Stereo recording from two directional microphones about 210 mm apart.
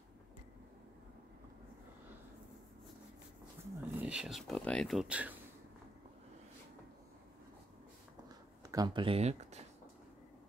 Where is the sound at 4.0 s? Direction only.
5° right (ahead or behind).